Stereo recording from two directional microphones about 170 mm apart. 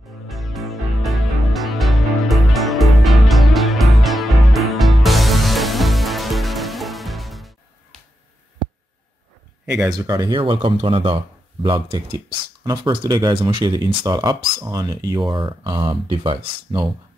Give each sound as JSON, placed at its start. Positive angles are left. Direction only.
{"t": 0.3, "sound": "music", "side_deg": 0}
{"t": 9.7, "sound": "speech", "side_deg": -20}